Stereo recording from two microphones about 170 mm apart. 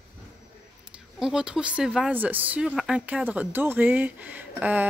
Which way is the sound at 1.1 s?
5° right (ahead or behind).